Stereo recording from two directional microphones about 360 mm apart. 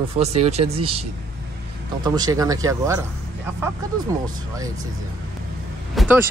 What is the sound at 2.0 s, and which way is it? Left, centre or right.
Speech, centre.